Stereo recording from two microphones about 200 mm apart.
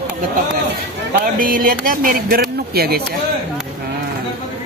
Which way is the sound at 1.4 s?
45° right (ahead or behind).